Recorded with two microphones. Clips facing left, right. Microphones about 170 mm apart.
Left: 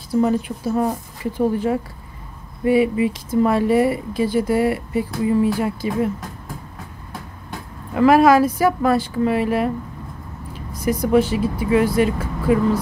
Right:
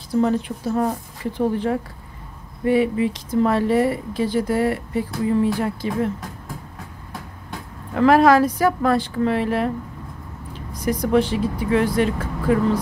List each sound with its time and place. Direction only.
0.1 s speech: 10° left (ahead or behind)
7.9 s speech: 10° left (ahead or behind)